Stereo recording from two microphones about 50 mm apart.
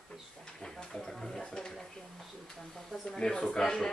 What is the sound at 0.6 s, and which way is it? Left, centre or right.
Speech, centre.